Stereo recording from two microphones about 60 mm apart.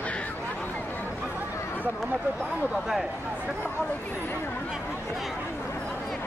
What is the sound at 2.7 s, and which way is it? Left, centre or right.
Speech, centre.